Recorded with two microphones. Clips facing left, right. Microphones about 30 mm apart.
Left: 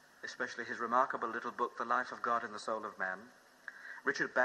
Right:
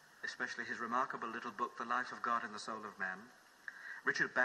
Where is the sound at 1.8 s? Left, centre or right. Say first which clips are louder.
Left 4 dB; left.